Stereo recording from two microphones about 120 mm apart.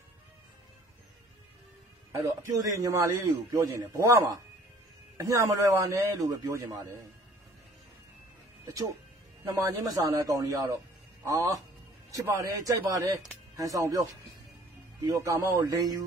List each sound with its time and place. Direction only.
2.1 s speech: 30° right (ahead or behind)
5.1 s speech: 25° right (ahead or behind)
9.4 s speech: 25° right (ahead or behind)